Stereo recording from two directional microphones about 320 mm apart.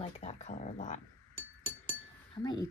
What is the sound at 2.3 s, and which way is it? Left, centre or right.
Speech, centre.